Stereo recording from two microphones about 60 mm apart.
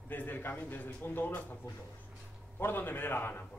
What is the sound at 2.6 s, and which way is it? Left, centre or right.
Speech, left.